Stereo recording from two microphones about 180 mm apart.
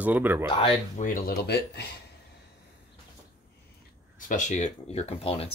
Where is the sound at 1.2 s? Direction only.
65° left (ahead or behind).